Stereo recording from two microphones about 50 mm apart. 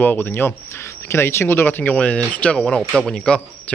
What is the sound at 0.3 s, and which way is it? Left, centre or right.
Speech, left.